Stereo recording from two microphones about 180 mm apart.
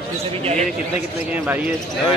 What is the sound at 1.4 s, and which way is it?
Speech, 10° right (ahead or behind).